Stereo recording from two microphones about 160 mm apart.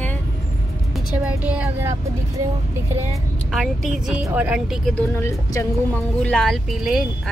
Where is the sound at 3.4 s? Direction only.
Centre (ahead or behind).